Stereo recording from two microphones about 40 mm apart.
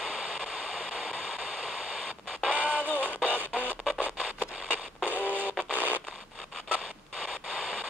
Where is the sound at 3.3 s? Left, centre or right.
Right.